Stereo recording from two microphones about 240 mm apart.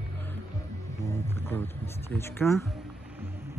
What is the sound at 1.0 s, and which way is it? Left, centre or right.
Speech, centre.